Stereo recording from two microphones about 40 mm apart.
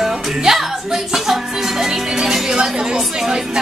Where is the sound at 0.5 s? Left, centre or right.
Centre.